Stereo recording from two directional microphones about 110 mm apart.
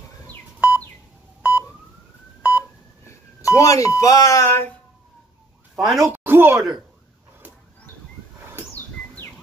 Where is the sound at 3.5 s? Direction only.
30° left (ahead or behind).